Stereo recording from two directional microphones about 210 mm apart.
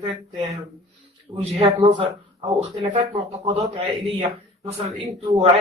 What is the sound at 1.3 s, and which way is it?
A man's voice, 30° right (ahead or behind).